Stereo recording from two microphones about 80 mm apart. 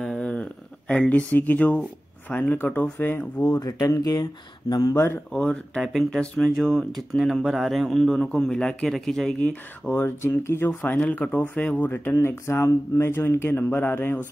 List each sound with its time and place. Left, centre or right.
0.0 s a sound: centre
2.2 s speech: centre
3.4 s speech: left
4.9 s speech: left
5.3 s speech: centre
9.4 s speech: centre
10.0 s speech: left